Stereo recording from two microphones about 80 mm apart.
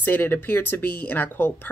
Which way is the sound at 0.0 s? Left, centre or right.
Left.